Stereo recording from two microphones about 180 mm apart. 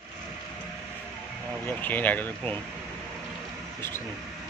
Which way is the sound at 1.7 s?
10° left (ahead or behind).